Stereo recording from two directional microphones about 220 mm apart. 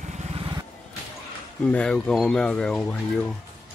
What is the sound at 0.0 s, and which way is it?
Vehicle, 30° right (ahead or behind).